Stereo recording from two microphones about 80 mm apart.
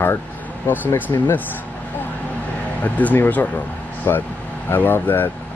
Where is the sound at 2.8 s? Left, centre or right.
Left.